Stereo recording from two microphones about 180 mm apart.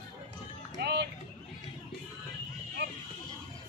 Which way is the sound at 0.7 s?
70° right (ahead or behind).